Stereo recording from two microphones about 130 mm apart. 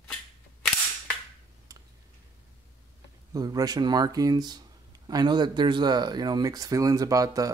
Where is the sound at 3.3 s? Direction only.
30° right (ahead or behind).